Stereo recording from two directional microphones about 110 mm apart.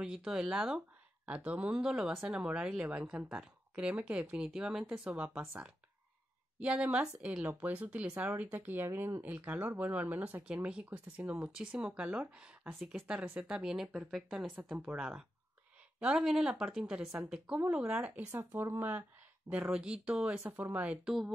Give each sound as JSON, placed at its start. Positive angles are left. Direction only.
{"t": 0.0, "sound": "speech", "side_deg": -5}
{"t": 6.6, "sound": "speech", "side_deg": -10}
{"t": 18.3, "sound": "speech", "side_deg": -25}